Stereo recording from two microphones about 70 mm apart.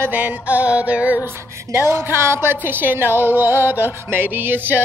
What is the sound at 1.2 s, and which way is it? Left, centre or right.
A woman's voice, right.